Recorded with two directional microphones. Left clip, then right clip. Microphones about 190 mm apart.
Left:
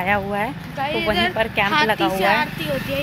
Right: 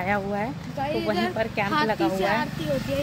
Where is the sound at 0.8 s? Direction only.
30° right (ahead or behind).